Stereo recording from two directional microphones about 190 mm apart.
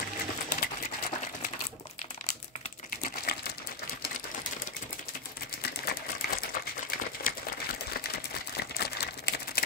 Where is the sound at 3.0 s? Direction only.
55° left (ahead or behind).